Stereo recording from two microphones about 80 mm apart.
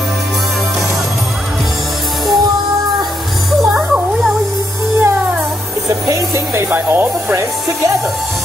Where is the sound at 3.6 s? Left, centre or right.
Centre.